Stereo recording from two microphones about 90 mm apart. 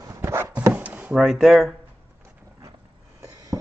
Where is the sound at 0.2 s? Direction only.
30° right (ahead or behind).